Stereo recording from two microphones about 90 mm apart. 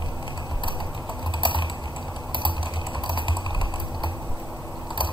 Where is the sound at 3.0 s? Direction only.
65° left (ahead or behind).